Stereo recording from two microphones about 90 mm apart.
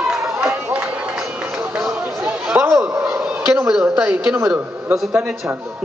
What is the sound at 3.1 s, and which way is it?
Fowl, 10° right (ahead or behind).